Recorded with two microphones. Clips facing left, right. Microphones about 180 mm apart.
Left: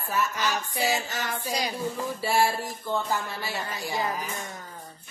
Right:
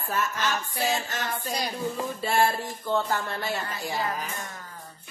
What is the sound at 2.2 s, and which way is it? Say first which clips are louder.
Speech: even; 5° left (ahead or behind).